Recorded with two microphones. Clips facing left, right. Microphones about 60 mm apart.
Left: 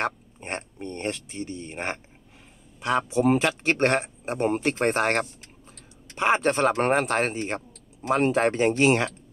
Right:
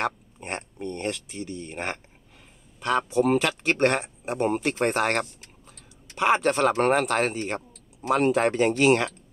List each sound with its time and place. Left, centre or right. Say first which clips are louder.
0.7 s speech: right 2 dB; left